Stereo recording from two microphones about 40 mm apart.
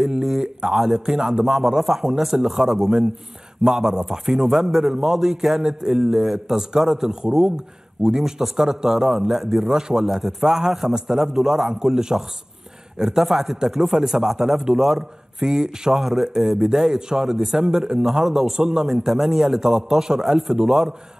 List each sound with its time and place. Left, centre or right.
0.0 s a sound: centre
0.7 s a man's voice: centre
9.7 s speech: centre